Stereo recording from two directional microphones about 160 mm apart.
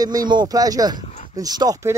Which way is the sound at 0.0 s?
25° right (ahead or behind).